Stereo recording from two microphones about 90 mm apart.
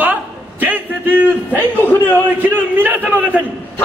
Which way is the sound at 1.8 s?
25° left (ahead or behind).